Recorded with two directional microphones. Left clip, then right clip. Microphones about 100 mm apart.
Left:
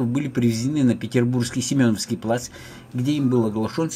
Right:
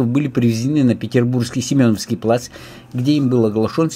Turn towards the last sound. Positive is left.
turn(degrees=-45)  # may be behind; listen again after turning